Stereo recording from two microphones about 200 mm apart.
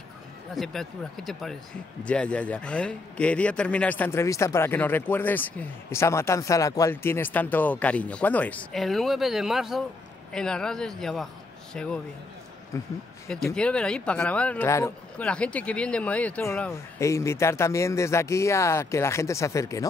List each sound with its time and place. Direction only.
0.6 s a man's voice: centre (ahead or behind)
12.7 s a man's voice: 15° left (ahead or behind)
13.6 s a man's voice: 5° left (ahead or behind)